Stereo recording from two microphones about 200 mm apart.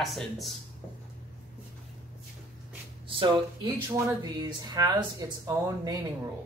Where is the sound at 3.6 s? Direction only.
15° right (ahead or behind).